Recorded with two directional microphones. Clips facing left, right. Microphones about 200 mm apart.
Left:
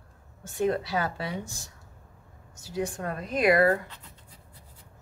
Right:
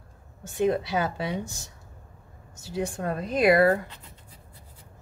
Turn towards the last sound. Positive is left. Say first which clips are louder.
# right 2 dB
turn(degrees=-30)  # may be behind; listen again after turning